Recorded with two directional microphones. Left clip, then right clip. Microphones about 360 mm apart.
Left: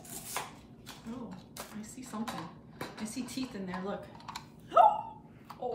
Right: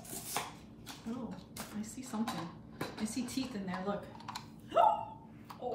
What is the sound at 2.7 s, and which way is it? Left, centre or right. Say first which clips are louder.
Typing: right 1 dB; centre.